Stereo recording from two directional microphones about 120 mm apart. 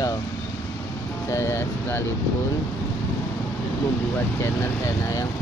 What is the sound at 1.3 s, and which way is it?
Speech, 20° left (ahead or behind).